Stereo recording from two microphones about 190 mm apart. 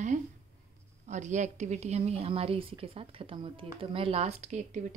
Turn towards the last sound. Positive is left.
turn(degrees=-35)  # may be behind; listen again after turning